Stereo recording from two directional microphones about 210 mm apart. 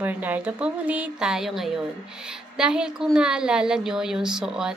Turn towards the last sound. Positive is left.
turn(degrees=-5)  # may be behind; listen again after turning